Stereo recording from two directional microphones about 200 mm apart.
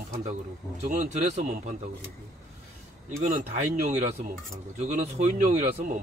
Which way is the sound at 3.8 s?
35° right (ahead or behind).